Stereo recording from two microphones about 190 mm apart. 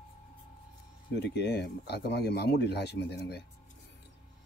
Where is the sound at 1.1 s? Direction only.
65° left (ahead or behind).